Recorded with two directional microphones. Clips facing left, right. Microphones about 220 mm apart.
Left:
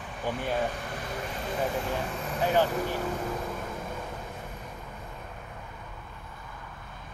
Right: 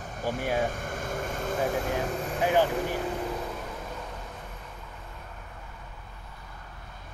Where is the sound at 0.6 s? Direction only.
45° right (ahead or behind).